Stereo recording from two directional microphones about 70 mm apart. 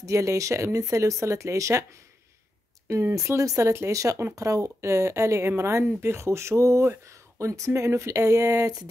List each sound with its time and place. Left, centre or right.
0.0 s speech: right
2.9 s speech: right